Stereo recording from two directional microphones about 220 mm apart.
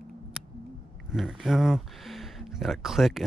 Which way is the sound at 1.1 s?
Centre (ahead or behind).